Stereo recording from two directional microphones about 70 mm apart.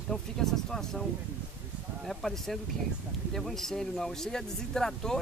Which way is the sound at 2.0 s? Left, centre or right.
Centre.